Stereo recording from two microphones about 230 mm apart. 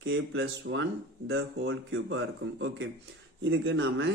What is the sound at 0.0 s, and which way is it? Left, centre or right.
Speech, right.